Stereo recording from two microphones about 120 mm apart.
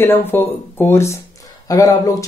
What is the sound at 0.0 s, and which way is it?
A man's voice, 20° left (ahead or behind).